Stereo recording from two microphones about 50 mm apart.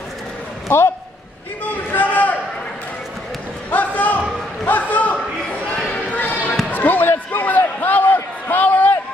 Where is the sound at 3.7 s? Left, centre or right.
Left.